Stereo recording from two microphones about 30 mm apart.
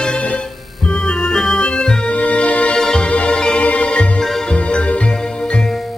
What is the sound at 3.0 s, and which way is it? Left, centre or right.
Music, left.